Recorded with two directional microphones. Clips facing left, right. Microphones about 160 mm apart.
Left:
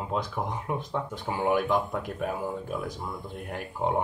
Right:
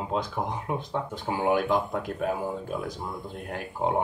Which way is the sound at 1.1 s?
Centre (ahead or behind).